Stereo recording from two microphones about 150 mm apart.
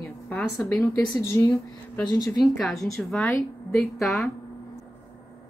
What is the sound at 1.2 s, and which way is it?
Speech, 20° left (ahead or behind).